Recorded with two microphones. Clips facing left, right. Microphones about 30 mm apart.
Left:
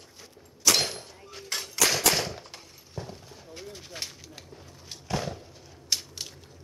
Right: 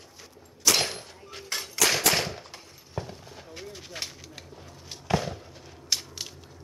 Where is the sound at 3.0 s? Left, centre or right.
Right.